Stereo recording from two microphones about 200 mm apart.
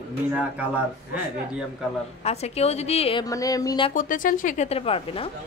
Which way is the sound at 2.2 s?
30° left (ahead or behind).